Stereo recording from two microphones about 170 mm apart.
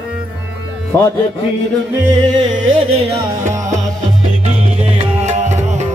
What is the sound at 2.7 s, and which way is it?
Music, 35° right (ahead or behind).